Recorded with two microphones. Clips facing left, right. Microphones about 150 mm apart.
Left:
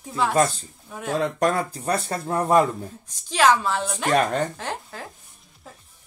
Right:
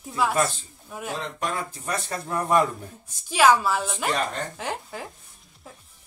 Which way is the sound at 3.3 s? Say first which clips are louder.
Even; 10° right (ahead or behind).